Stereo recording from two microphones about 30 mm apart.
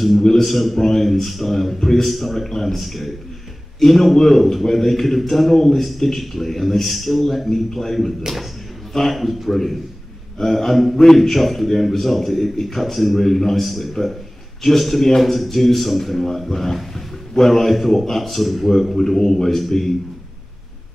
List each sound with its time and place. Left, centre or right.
0.2 s a man's voice: centre
0.5 s a man's voice: centre
19.5 s a man's voice: centre